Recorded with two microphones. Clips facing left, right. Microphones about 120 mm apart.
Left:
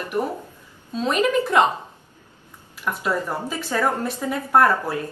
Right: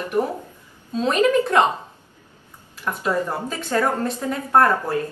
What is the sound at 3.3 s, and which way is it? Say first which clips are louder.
Speech: even; 10° left (ahead or behind).